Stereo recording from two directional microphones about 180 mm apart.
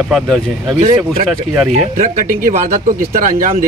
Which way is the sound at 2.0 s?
50° right (ahead or behind).